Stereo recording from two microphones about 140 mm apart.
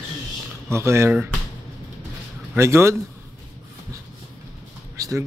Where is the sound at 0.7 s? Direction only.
20° right (ahead or behind).